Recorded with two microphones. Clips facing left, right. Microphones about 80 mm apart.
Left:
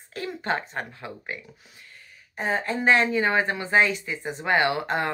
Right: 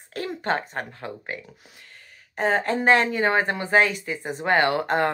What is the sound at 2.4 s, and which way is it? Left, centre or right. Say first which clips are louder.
Speech: right 4 dB; right.